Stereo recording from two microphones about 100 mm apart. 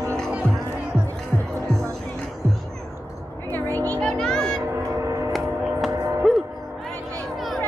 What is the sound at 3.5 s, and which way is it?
Music, 20° left (ahead or behind).